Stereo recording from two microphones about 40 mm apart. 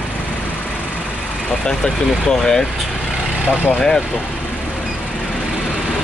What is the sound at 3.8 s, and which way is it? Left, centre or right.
Speech, centre.